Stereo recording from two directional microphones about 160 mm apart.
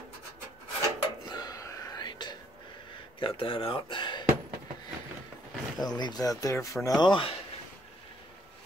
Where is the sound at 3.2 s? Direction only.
35° left (ahead or behind).